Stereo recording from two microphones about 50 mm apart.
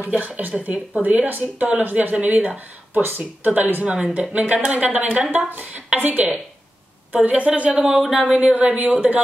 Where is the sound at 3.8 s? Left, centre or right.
Right.